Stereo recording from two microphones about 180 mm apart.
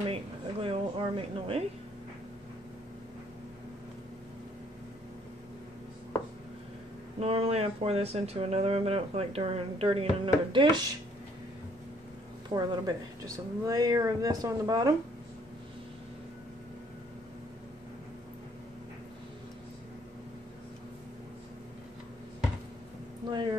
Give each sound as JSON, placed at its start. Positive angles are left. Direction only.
{"t": 0.1, "sound": "speech", "side_deg": -30}
{"t": 7.2, "sound": "speech", "side_deg": -35}
{"t": 12.4, "sound": "a woman's voice", "side_deg": -20}